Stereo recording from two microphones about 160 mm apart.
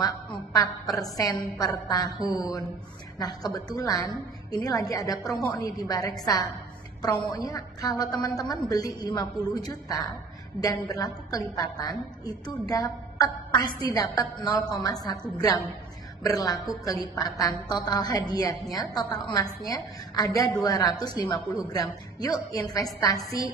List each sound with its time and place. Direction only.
0.0 s a woman's voice: 25° left (ahead or behind)